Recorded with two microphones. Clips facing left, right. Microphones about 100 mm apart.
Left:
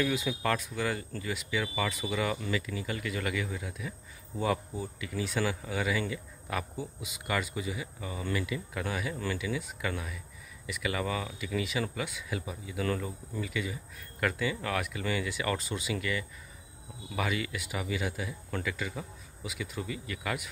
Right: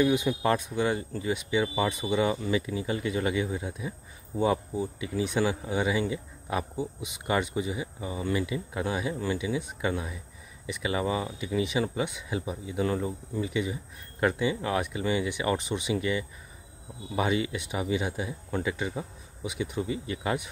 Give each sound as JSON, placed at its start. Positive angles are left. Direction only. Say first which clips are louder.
{"t": 0.0, "sound": "speech", "louder": "right 6 dB", "side_deg": -20}